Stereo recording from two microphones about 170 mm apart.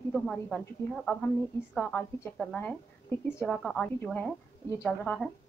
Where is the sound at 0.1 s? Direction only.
5° left (ahead or behind).